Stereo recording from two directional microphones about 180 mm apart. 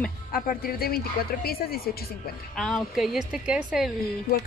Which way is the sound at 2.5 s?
Centre (ahead or behind).